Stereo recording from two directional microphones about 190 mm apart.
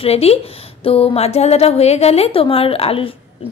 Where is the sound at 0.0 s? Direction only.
30° left (ahead or behind).